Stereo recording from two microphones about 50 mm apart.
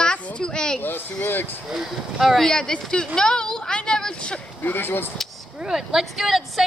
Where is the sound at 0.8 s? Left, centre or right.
Left.